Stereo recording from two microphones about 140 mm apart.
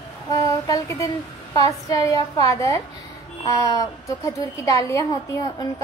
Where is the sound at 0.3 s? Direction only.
25° left (ahead or behind).